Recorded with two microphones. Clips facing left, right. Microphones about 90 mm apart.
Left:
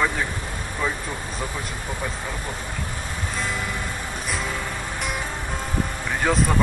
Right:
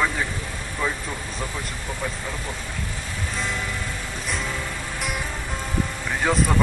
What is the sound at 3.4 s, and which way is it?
Speech, 5° left (ahead or behind).